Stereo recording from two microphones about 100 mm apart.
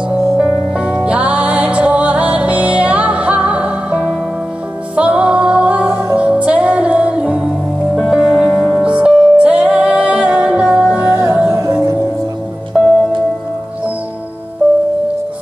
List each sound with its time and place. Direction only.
0.4 s music: 10° right (ahead or behind)
11.1 s music: 25° right (ahead or behind)